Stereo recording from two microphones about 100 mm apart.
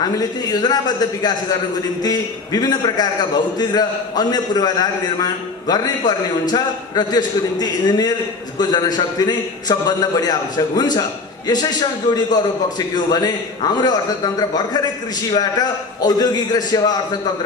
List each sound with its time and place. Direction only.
0.0 s a man's voice: 40° left (ahead or behind)